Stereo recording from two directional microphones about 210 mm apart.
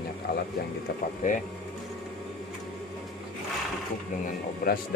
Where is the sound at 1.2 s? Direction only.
35° left (ahead or behind).